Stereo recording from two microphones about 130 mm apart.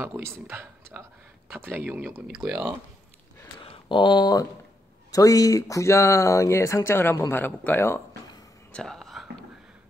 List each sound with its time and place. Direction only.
0.0 s speech: 20° right (ahead or behind)
3.6 s speech: 40° left (ahead or behind); by 8.0 s 15° left (ahead or behind)
8.7 s whispering: 5° left (ahead or behind)